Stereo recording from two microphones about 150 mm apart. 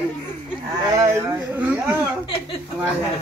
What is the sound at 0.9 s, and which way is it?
Speech, 20° right (ahead or behind).